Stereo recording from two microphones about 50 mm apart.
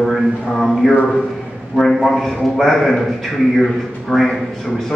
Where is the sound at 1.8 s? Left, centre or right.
Centre.